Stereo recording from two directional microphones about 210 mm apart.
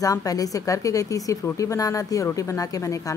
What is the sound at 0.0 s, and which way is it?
Speech, 15° left (ahead or behind).